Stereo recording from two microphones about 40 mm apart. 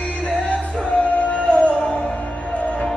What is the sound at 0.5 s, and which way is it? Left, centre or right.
Music, left.